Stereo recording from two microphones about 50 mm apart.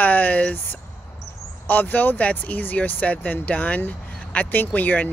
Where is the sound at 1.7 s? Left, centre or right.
Left.